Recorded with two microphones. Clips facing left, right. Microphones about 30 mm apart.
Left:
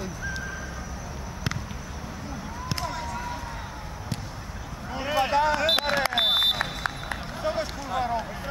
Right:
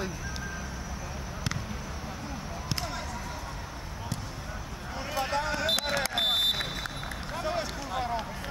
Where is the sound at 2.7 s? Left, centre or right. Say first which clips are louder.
Left 3 dB; centre.